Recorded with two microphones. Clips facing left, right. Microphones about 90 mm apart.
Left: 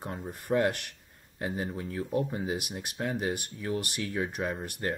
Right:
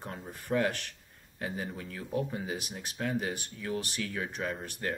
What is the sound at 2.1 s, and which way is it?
Speech, centre (ahead or behind).